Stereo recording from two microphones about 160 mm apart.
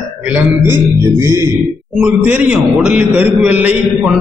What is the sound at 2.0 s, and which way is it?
A man's voice, 10° right (ahead or behind).